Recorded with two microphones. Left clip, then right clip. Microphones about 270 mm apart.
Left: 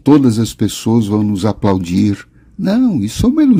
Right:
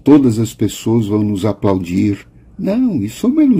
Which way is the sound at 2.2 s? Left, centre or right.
Left.